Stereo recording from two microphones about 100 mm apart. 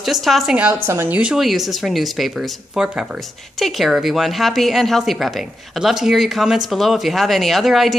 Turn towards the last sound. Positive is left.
turn(degrees=0)  # may be behind; listen again after turning